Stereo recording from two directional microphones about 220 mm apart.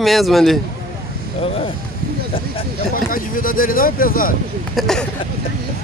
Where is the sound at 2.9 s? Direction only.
40° left (ahead or behind).